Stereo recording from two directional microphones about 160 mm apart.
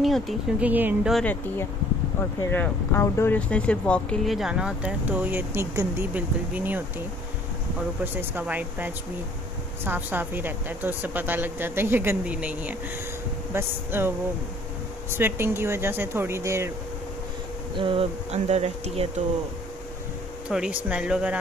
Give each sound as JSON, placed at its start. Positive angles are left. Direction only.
{"t": 0.0, "sound": "speech", "side_deg": 0}
{"t": 1.1, "sound": "speech", "side_deg": 10}
{"t": 8.0, "sound": "speech", "side_deg": -10}
{"t": 17.7, "sound": "speech", "side_deg": -35}
{"t": 20.4, "sound": "speech", "side_deg": -5}